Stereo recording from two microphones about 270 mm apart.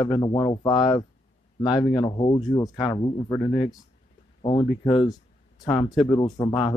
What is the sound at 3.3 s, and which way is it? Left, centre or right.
Speech, centre.